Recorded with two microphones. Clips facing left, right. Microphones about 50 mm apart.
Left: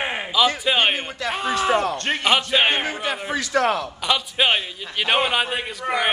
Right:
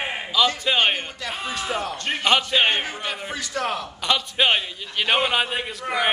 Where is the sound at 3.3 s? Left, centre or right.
Left.